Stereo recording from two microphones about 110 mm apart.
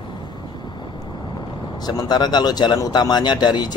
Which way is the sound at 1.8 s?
40° left (ahead or behind).